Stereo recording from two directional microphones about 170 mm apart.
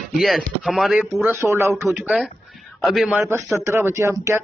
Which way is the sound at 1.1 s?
15° right (ahead or behind).